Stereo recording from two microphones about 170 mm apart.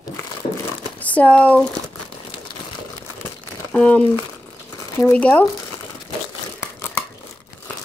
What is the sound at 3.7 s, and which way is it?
Speech, 5° left (ahead or behind).